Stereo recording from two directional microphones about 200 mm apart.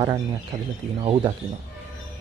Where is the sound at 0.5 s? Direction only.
40° right (ahead or behind).